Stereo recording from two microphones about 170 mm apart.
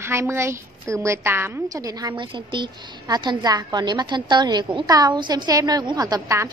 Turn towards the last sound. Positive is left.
turn(degrees=-20)  # may be behind; listen again after turning